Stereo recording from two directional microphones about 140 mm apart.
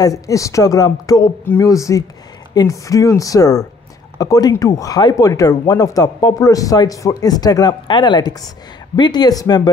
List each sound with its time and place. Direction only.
0.0 s speech: 25° left (ahead or behind)